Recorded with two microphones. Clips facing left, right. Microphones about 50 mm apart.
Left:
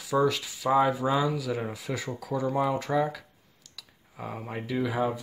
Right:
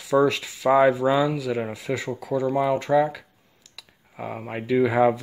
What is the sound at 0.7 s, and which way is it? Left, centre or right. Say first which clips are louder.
Speech: right 5 dB; right.